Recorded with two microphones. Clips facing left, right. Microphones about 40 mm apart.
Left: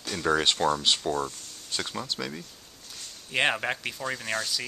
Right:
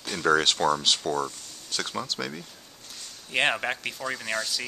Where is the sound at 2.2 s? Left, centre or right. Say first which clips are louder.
Right 1 dB; centre.